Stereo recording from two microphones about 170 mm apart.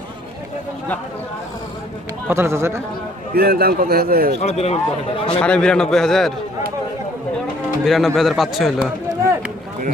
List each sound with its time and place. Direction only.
2.2 s a man's voice: 15° right (ahead or behind)
3.3 s a man's voice: 65° right (ahead or behind)
4.4 s a man's voice: 40° left (ahead or behind)
5.4 s a man's voice: 5° left (ahead or behind)
7.8 s a man's voice: centre (ahead or behind)